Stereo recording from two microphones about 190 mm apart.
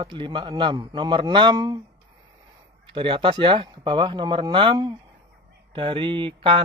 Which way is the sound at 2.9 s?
25° right (ahead or behind).